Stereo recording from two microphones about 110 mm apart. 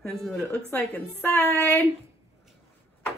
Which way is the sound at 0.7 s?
20° left (ahead or behind).